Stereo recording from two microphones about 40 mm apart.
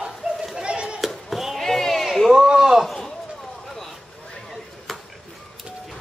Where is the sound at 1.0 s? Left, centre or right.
Centre.